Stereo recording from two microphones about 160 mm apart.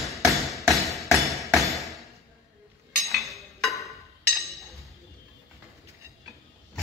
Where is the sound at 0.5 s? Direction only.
Centre (ahead or behind).